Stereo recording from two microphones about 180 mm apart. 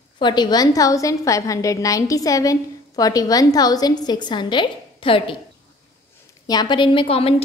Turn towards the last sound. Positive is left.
turn(degrees=35)  # may be behind; listen again after turning